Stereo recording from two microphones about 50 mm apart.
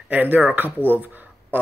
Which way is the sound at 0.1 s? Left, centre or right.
Right.